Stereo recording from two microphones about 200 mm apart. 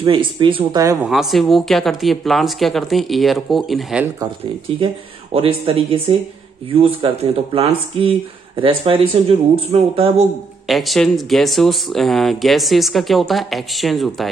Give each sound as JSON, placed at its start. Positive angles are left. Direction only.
{"t": 0.0, "sound": "speech", "side_deg": -25}
{"t": 1.0, "sound": "speech", "side_deg": 0}
{"t": 4.2, "sound": "speech", "side_deg": -25}
{"t": 10.7, "sound": "speech", "side_deg": 0}